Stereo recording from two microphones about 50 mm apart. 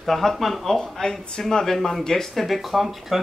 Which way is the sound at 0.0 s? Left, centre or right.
Centre.